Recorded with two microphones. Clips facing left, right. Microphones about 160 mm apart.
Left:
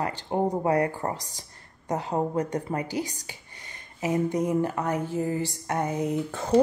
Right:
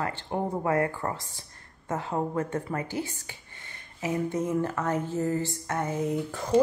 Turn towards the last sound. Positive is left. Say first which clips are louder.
# left 1 dB
turn(degrees=15)  # may be behind; listen again after turning